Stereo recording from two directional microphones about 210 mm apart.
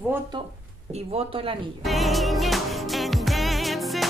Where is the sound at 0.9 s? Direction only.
30° right (ahead or behind).